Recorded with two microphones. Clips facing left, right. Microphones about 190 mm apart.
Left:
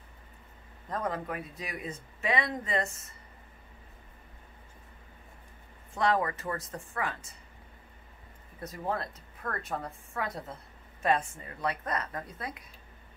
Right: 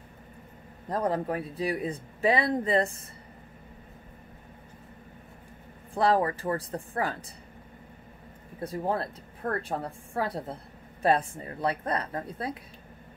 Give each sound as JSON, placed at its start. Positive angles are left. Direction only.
{"t": 0.8, "sound": "a woman's voice", "side_deg": -35}
{"t": 5.9, "sound": "a woman's voice", "side_deg": -35}
{"t": 8.5, "sound": "a woman's voice", "side_deg": -30}